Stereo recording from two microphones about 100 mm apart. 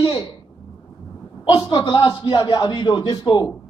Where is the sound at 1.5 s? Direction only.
45° left (ahead or behind).